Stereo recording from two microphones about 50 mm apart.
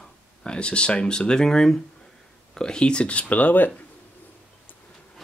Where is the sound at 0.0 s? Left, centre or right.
Centre; by 3.7 s left.